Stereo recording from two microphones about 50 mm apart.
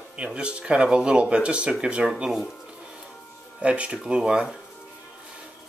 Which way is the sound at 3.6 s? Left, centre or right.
Right.